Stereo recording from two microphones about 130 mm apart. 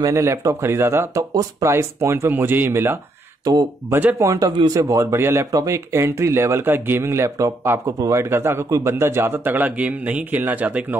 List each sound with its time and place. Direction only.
0.0 s speech: 20° right (ahead or behind)
4.2 s speech: 25° right (ahead or behind)